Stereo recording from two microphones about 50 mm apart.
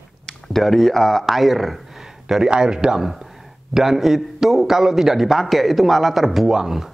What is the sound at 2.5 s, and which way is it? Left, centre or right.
A man's voice, centre.